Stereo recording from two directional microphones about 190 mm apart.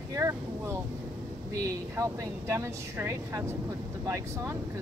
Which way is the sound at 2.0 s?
15° right (ahead or behind).